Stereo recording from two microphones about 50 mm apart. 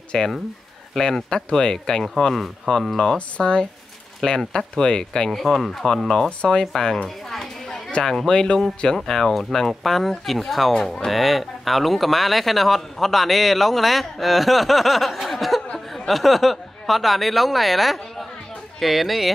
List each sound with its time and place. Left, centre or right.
0.1 s speech: centre
3.2 s speech: centre
6.2 s speech: centre
6.6 s speech: centre
8.0 s speech: centre